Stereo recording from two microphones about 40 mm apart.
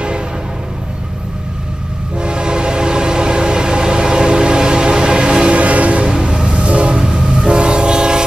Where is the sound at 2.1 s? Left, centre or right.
Right.